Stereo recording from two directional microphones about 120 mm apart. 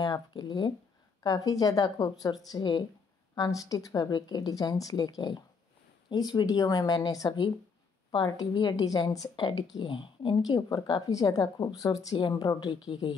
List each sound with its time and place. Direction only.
0.0 s a woman's voice: 35° left (ahead or behind)